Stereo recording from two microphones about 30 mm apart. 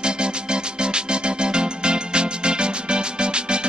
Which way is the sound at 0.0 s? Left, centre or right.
Right.